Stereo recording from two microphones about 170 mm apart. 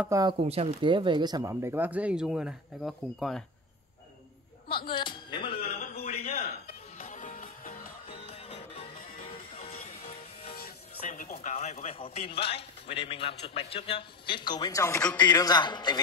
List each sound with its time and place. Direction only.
0.1 s speech: 25° right (ahead or behind)
0.4 s speech: 35° right (ahead or behind); by 3.4 s centre (ahead or behind)
4.7 s speech: 30° left (ahead or behind)
5.6 s a sound: 65° left (ahead or behind)
7.0 s music: 50° left (ahead or behind)
9.2 s music: 30° left (ahead or behind)
10.5 s music: 55° left (ahead or behind)
11.3 s a man's voice: 45° left (ahead or behind); by 15.0 s 20° left (ahead or behind)
15.0 s a man's voice: 5° left (ahead or behind)
15.2 s a man's voice: 20° left (ahead or behind)